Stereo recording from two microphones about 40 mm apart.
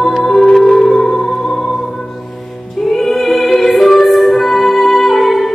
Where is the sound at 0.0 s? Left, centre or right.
Centre.